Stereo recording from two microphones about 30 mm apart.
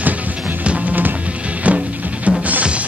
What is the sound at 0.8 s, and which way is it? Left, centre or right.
Music, right.